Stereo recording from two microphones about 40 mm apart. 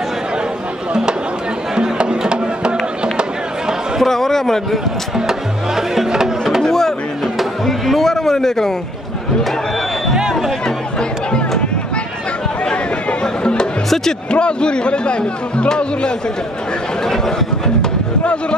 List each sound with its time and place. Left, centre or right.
1.8 s music: right
4.0 s a sound: centre
5.8 s speech: centre
6.6 s music: centre
7.6 s a sound: centre
13.2 s music: left
14.3 s speech: left